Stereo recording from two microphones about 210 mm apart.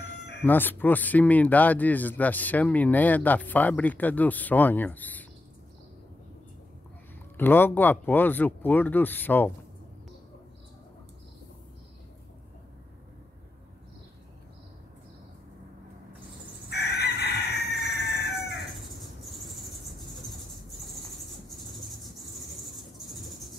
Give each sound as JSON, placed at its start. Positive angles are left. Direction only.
{"t": 0.4, "sound": "speech", "side_deg": 10}
{"t": 7.3, "sound": "speech", "side_deg": 10}
{"t": 16.7, "sound": "chicken", "side_deg": 50}
{"t": 18.3, "sound": "bird", "side_deg": 0}
{"t": 21.5, "sound": "vehicle", "side_deg": 0}